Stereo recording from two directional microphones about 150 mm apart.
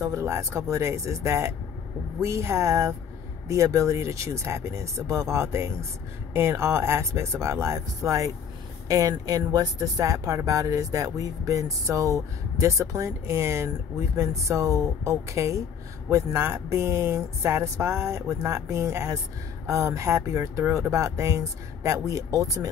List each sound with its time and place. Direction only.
0.0 s speech: 20° right (ahead or behind)